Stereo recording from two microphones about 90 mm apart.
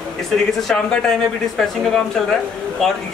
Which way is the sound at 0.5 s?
5° left (ahead or behind).